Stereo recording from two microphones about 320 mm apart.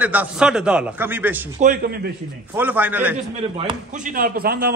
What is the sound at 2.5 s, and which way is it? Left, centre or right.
Speech, centre.